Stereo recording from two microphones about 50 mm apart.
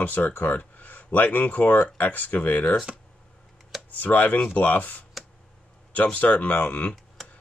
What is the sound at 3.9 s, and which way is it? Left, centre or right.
Speech, left.